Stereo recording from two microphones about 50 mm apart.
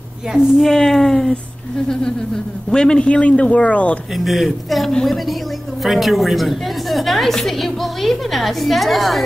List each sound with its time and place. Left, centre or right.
0.6 s a woman's voice: centre
2.7 s a man's voice: centre
4.2 s a woman's voice: centre